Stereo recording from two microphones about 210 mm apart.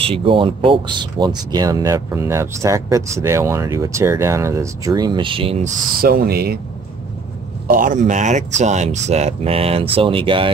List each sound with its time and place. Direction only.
0.0 s speech: 25° right (ahead or behind)
5.9 s speech: 45° right (ahead or behind)
7.6 s speech: 40° right (ahead or behind); by 10.5 s 25° right (ahead or behind)